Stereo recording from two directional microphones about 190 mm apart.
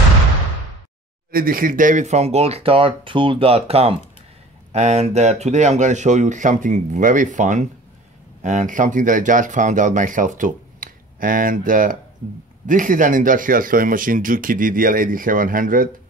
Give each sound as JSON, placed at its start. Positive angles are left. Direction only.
{"t": 1.3, "sound": "speech", "side_deg": -50}